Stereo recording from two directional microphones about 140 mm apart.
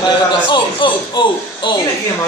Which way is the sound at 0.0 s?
35° left (ahead or behind).